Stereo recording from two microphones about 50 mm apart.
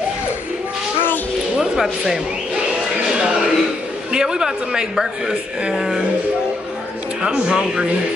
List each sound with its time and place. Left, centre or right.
1.6 s a sound: centre
4.1 s speech: centre
7.2 s speech: centre